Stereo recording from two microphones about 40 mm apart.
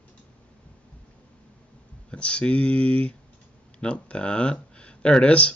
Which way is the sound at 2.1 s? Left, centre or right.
Left.